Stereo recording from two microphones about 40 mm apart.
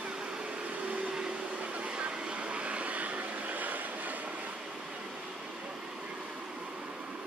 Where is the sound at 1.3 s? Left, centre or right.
Right.